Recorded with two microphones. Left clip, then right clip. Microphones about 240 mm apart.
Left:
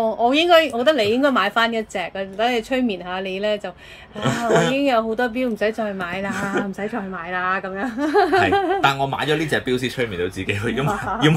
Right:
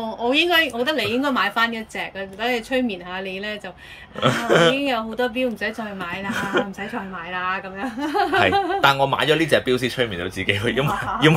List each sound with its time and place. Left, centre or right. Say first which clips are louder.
0.0 s a woman's voice: left 3 dB; centre
4.2 s speech: right 2 dB; centre
4.7 s speech: left 4 dB; centre
7.3 s speech: left 3 dB; left
8.8 s speech: right 2 dB; centre